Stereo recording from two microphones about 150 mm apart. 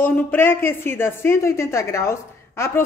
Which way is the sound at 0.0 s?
10° left (ahead or behind).